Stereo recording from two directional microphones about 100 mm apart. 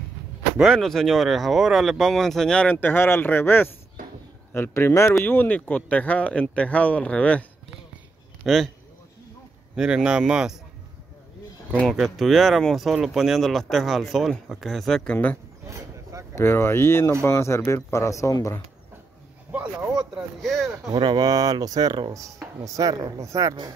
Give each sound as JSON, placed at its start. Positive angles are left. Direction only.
{"t": 0.6, "sound": "speech", "side_deg": 0}
{"t": 8.5, "sound": "speech", "side_deg": 0}
{"t": 9.8, "sound": "speech", "side_deg": -5}
{"t": 11.9, "sound": "speech", "side_deg": 0}
{"t": 15.7, "sound": "vehicle", "side_deg": -30}
{"t": 16.3, "sound": "speech", "side_deg": 25}
{"t": 19.5, "sound": "speech", "side_deg": -10}
{"t": 20.4, "sound": "speech", "side_deg": 0}
{"t": 20.9, "sound": "speech", "side_deg": -50}